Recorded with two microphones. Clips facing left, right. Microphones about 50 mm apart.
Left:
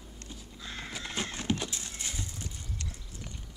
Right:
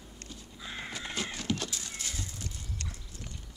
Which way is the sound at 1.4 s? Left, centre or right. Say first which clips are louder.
Left 1 dB; left.